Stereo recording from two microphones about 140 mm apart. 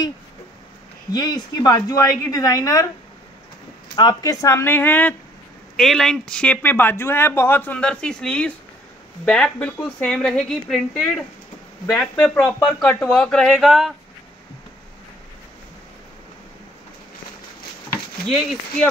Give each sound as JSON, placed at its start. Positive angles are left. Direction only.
{"t": 1.1, "sound": "speech", "side_deg": 30}
{"t": 3.9, "sound": "speech", "side_deg": 30}
{"t": 5.8, "sound": "speech", "side_deg": 0}